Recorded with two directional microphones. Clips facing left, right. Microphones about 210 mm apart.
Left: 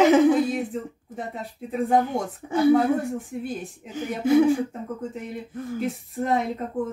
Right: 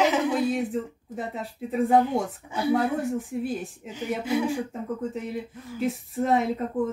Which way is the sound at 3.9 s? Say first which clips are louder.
Left 6 dB; 50° left (ahead or behind).